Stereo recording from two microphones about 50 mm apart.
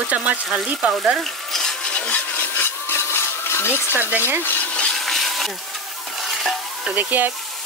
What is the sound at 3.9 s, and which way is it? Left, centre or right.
Speech, right.